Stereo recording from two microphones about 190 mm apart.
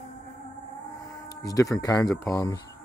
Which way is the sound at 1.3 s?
20° left (ahead or behind).